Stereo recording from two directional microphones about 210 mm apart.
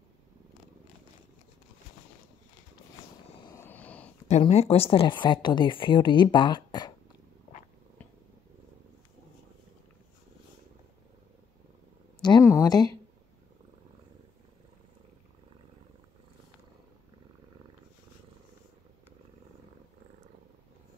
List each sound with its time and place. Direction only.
3.4 s vehicle: 10° left (ahead or behind)
4.3 s speech: 30° left (ahead or behind)
12.2 s a sound: 20° left (ahead or behind)